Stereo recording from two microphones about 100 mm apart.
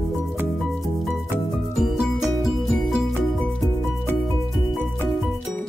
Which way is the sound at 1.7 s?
Centre (ahead or behind).